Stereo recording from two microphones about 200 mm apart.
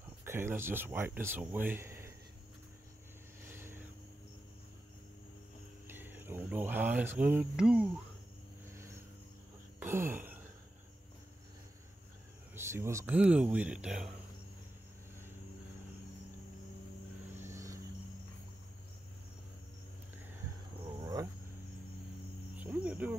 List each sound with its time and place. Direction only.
0.2 s speech: 10° right (ahead or behind)
3.4 s vehicle: 10° right (ahead or behind)
5.9 s speech: 10° right (ahead or behind)
8.6 s vehicle: 15° right (ahead or behind)
9.8 s a sound: 10° right (ahead or behind)
12.5 s speech: 10° right (ahead or behind)
17.4 s cricket: 15° right (ahead or behind)
21.0 s a sound: 20° right (ahead or behind)
22.6 s cricket: 5° right (ahead or behind)